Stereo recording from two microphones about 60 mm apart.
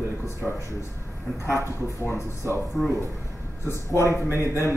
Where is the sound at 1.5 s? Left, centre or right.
Left.